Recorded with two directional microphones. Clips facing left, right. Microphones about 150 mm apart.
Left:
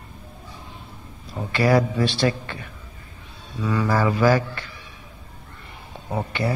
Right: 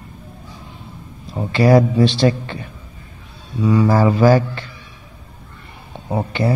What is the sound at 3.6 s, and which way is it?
A man's voice, 25° right (ahead or behind).